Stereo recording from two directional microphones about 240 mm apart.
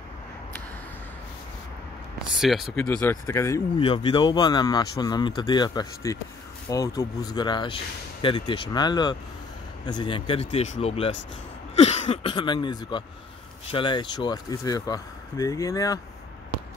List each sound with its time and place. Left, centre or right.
2.3 s speech: centre